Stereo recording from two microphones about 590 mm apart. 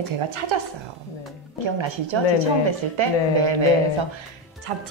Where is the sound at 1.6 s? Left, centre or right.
Right.